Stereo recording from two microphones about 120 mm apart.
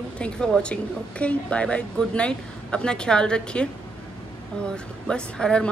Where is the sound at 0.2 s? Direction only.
5° left (ahead or behind).